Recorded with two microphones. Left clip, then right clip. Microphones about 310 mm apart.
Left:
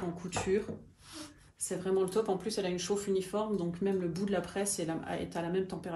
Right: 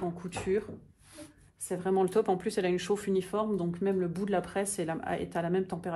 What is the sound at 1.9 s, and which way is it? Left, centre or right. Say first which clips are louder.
Speech: right 4 dB; centre.